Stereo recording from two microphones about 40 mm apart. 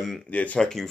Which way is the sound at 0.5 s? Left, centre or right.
Centre.